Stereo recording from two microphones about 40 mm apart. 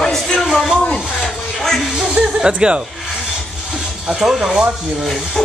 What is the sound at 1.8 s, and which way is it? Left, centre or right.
Speech, centre.